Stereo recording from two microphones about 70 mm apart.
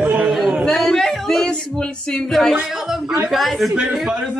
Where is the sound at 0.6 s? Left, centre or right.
Centre.